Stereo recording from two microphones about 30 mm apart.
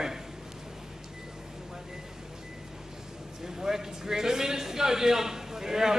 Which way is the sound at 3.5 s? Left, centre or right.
Centre.